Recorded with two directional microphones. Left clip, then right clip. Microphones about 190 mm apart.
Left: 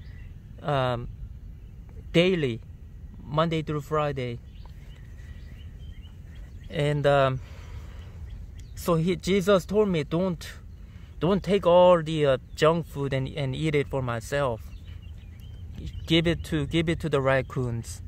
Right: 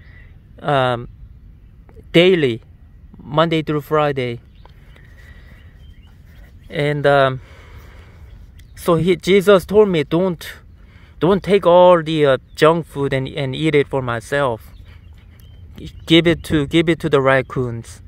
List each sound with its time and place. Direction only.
0.6 s speech: 25° right (ahead or behind)
2.1 s speech: 30° right (ahead or behind)
6.7 s speech: 25° right (ahead or behind)
15.7 s speech: 30° right (ahead or behind)